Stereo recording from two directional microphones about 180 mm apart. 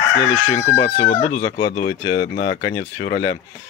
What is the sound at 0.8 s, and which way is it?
Speech, 35° left (ahead or behind).